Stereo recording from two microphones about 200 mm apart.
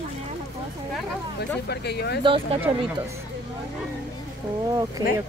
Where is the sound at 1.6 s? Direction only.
55° left (ahead or behind).